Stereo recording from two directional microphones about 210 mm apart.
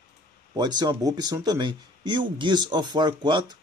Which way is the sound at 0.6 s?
20° right (ahead or behind).